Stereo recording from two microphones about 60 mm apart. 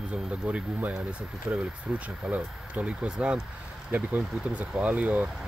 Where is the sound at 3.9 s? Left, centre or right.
Right.